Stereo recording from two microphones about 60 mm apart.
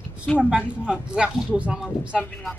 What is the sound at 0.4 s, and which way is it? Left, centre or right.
Speech, centre.